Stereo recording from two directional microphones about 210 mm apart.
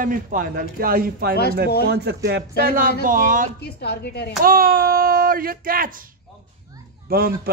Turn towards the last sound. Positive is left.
turn(degrees=-45)  # may be behind; listen again after turning